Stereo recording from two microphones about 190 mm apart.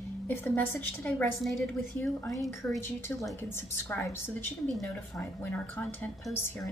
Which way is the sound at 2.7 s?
15° left (ahead or behind).